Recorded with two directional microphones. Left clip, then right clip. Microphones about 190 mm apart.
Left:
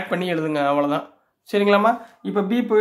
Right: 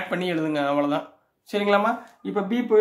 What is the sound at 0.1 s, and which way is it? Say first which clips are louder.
Speech: left 3 dB; 20° left (ahead or behind).